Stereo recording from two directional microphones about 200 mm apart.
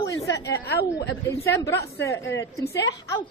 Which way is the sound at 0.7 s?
55° left (ahead or behind).